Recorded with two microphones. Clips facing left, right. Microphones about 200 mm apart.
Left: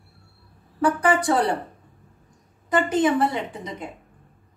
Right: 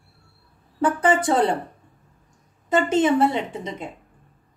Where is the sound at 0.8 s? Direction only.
25° right (ahead or behind).